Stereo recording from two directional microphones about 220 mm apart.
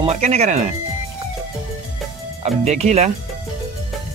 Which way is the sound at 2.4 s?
30° right (ahead or behind).